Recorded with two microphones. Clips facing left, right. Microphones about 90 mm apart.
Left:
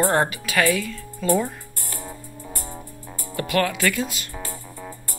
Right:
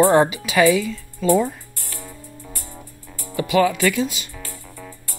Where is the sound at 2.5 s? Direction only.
30° left (ahead or behind).